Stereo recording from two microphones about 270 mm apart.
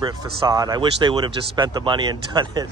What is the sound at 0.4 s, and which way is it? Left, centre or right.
Speech, centre.